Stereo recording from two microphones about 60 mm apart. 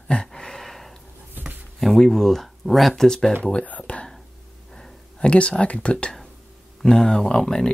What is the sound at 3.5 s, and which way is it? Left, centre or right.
Speech, left.